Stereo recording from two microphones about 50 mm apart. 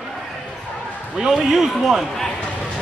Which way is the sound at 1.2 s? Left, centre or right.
Centre.